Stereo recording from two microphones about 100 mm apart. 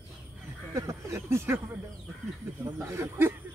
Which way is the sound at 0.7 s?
30° right (ahead or behind).